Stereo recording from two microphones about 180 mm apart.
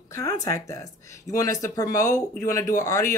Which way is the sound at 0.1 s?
20° left (ahead or behind).